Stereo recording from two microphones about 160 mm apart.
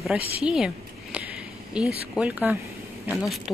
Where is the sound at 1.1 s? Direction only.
5° right (ahead or behind).